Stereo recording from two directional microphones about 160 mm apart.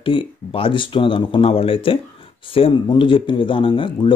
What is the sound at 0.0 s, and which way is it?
Speech, 35° left (ahead or behind).